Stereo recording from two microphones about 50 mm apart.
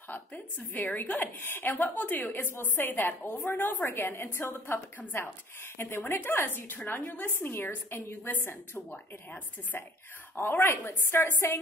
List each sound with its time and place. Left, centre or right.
0.1 s a woman's voice: left
8.9 s a woman's voice: left
10.4 s a woman's voice: left